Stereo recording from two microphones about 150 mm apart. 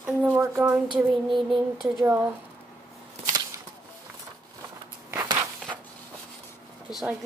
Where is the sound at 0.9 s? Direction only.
Centre (ahead or behind).